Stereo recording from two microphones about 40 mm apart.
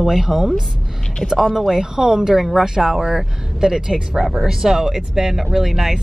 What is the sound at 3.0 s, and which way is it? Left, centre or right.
Speech, centre.